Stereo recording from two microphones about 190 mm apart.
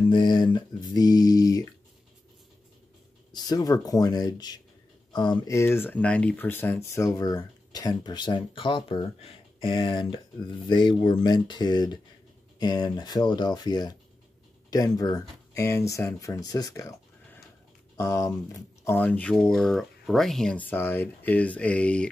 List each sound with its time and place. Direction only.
0.0 s speech: 25° left (ahead or behind)
3.3 s speech: 20° left (ahead or behind)